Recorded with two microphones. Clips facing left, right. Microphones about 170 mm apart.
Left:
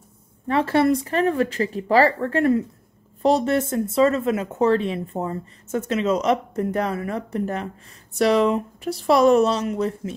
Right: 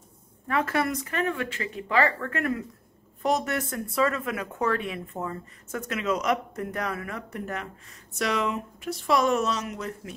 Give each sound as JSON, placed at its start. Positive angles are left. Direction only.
{"t": 0.5, "sound": "speech", "side_deg": 30}